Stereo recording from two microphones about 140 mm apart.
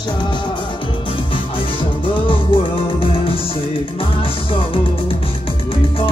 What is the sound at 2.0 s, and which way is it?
Music, 40° left (ahead or behind).